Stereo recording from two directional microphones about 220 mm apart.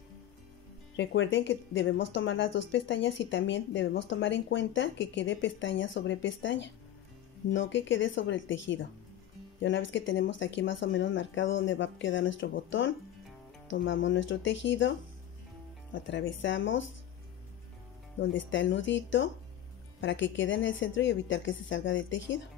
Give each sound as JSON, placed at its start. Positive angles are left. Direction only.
{"t": 0.9, "sound": "speech", "side_deg": 60}
{"t": 18.2, "sound": "speech", "side_deg": 60}